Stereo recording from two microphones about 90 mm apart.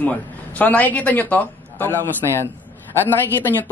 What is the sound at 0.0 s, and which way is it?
A man's voice, 15° left (ahead or behind).